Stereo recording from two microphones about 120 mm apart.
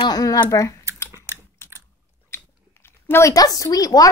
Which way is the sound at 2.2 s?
20° left (ahead or behind).